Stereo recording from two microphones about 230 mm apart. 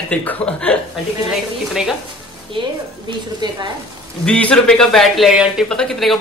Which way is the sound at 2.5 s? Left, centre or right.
Right.